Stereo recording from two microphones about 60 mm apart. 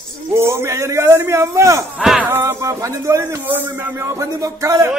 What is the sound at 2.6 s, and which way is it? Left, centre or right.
Speech, right.